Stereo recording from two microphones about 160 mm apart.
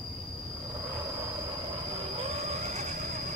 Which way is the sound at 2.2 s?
45° right (ahead or behind).